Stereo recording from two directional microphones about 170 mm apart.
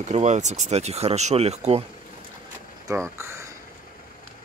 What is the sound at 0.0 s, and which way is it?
Speech, 45° right (ahead or behind).